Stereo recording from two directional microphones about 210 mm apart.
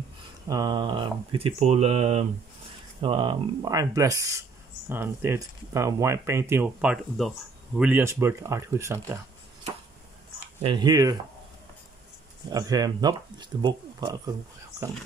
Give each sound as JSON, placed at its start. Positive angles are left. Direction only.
{"t": 0.5, "sound": "speech", "side_deg": -20}
{"t": 10.6, "sound": "speech", "side_deg": -20}
{"t": 12.4, "sound": "speech", "side_deg": -20}